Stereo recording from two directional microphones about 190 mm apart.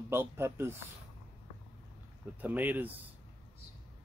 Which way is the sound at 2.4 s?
10° right (ahead or behind).